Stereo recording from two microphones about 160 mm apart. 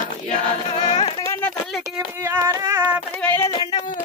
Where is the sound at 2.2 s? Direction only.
20° right (ahead or behind).